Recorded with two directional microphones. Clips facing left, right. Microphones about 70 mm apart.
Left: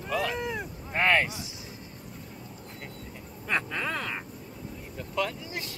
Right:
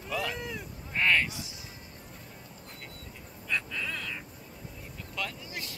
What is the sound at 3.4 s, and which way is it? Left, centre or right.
Quack, left.